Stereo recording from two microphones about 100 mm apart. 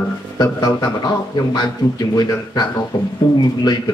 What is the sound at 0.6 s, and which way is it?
Speech, 40° left (ahead or behind).